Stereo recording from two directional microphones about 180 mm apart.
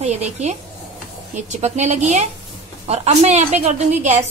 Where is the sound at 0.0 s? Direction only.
40° right (ahead or behind).